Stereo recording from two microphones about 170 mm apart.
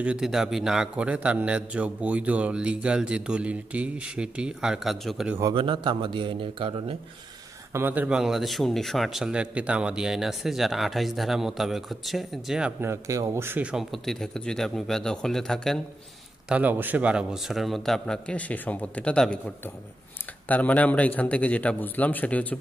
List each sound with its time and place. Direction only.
0.0 s a man's voice: 5° right (ahead or behind)
5.5 s a man's voice: 30° right (ahead or behind)
7.7 s speech: 10° right (ahead or behind)
12.8 s speech: 15° right (ahead or behind); by 15.8 s 5° left (ahead or behind)
16.4 s a man's voice: 10° right (ahead or behind); by 22.6 s 10° left (ahead or behind)